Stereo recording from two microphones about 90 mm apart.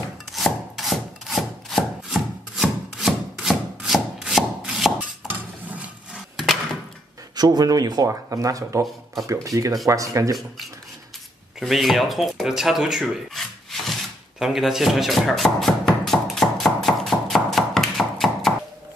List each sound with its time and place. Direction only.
0.3 s chopping: centre (ahead or behind)
5.3 s a sound: 15° right (ahead or behind)
6.3 s wood: centre (ahead or behind)
7.3 s speech: 45° right (ahead or behind)
11.6 s speech: centre (ahead or behind)
13.0 s rub: 5° left (ahead or behind)
14.4 s speech: 5° right (ahead or behind)
16.1 s music: centre (ahead or behind)